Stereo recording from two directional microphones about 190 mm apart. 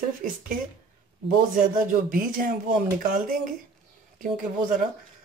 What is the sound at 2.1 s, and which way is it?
Speech, 45° right (ahead or behind).